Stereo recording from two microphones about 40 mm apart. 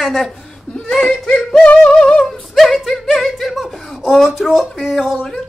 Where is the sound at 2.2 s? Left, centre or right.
Centre.